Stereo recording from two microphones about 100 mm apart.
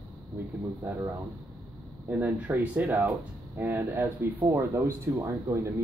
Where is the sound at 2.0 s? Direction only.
15° right (ahead or behind).